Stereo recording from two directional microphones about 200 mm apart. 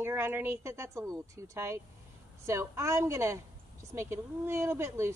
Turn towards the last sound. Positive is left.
turn(degrees=-15)  # may be behind; listen again after turning